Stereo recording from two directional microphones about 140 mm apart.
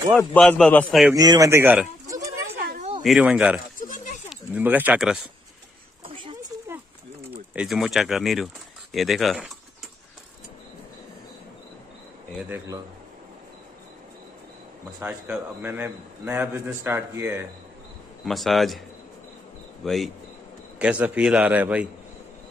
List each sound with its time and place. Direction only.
0.3 s a man's voice: 10° left (ahead or behind)
1.1 s speech: 30° right (ahead or behind)
2.0 s oink: 25° right (ahead or behind)
3.0 s speech: 5° right (ahead or behind)
3.8 s oink: 70° left (ahead or behind)
4.3 s speech: 10° right (ahead or behind)
7.2 s speech: 5° right (ahead or behind)
12.4 s speech: 25° right (ahead or behind)
15.0 s a man's voice: 5° right (ahead or behind)
18.2 s speech: centre (ahead or behind)
19.8 s speech: centre (ahead or behind)
20.8 s a man's voice: 10° right (ahead or behind)